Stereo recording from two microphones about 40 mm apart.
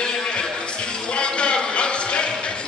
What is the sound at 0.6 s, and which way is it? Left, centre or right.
Music, left.